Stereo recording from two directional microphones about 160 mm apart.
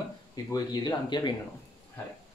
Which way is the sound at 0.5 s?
25° left (ahead or behind).